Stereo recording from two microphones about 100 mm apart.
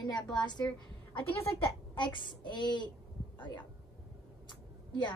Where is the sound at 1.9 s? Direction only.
55° left (ahead or behind).